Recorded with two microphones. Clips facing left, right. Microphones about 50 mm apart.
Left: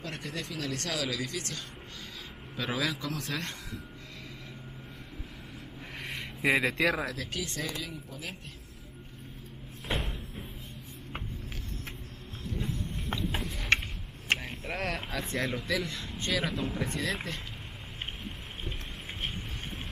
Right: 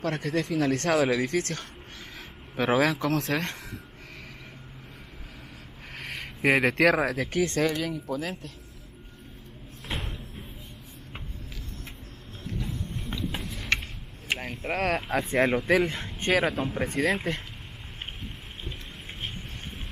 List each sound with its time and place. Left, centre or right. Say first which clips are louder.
0.0 s speech: right 10 dB; right
6.4 s speech: right 4 dB; right
6.7 s speech: right 6 dB; right
7.2 s speech: right 10 dB; right
9.8 s music: left 1 dB; centre
14.8 s speech: right 8 dB; centre
15.3 s speech: right 9 dB; right
16.8 s speech: right 7 dB; right